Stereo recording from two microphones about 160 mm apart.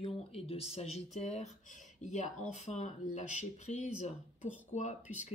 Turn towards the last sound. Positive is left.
turn(degrees=45)  # may be behind; listen again after turning